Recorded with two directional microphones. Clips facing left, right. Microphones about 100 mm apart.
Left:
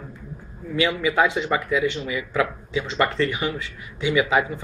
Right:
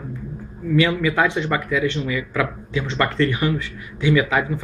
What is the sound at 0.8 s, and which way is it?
Speech, 15° left (ahead or behind).